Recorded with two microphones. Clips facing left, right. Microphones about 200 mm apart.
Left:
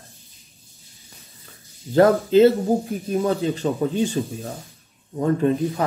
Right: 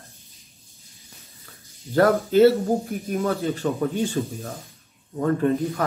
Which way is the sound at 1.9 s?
20° left (ahead or behind).